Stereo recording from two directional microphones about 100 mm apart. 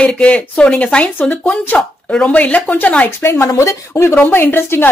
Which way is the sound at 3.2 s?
25° left (ahead or behind).